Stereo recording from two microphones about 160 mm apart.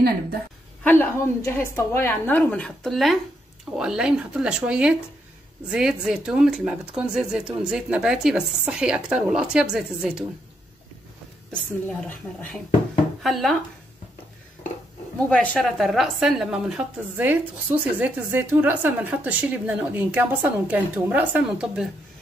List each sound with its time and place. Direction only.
0.8 s a woman's voice: 15° left (ahead or behind); by 10.2 s 5° right (ahead or behind)
11.5 s speech: 5° left (ahead or behind)
15.1 s a woman's voice: 5° left (ahead or behind)